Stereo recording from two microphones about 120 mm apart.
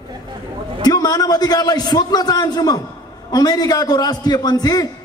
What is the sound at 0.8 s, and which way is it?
A man's voice, 35° left (ahead or behind).